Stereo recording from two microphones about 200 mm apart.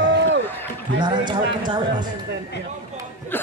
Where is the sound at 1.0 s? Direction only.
20° right (ahead or behind).